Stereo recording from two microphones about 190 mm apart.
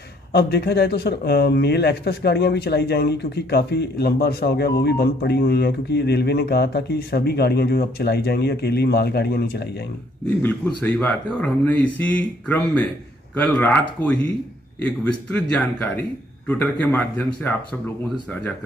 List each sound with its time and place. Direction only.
0.3 s speech: 55° left (ahead or behind)
10.4 s speech: 10° left (ahead or behind)
16.4 s a man's voice: 10° left (ahead or behind)